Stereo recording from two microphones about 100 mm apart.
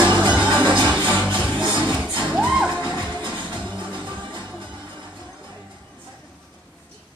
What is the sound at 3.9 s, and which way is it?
Music, 55° right (ahead or behind).